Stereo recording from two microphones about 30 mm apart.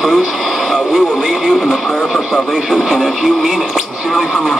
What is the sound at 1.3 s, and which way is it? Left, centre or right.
Speech, centre.